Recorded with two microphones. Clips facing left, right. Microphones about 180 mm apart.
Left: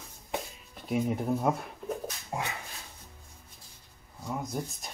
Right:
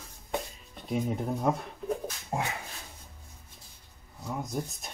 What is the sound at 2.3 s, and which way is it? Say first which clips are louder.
Dog: right 3 dB; 30° right (ahead or behind).